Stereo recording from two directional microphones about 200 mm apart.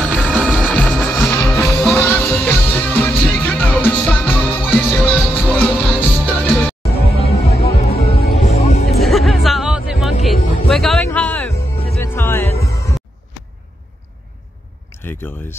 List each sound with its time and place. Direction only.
0.0 s music: 5° right (ahead or behind)
6.8 s music: 30° left (ahead or behind)
9.0 s music: centre (ahead or behind)